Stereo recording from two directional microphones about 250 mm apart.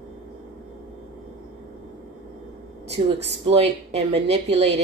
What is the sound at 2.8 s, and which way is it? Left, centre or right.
A woman's voice, right.